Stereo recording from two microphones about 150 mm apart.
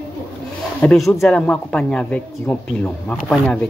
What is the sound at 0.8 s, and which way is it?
Speech, centre (ahead or behind).